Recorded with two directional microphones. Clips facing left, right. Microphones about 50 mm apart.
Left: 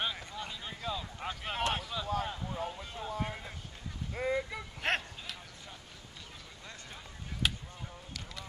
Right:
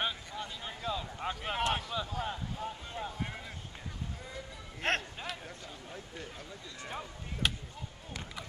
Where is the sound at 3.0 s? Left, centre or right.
Right.